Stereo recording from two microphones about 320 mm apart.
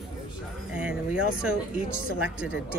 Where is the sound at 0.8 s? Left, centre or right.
Centre.